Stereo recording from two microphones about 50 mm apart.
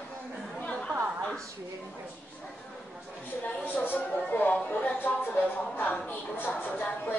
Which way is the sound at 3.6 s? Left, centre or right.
Left.